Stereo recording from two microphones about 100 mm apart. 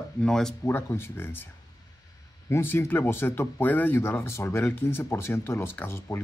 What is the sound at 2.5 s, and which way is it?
Speech, 25° left (ahead or behind).